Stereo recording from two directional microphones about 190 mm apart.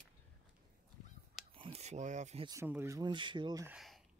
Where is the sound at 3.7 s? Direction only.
Centre (ahead or behind).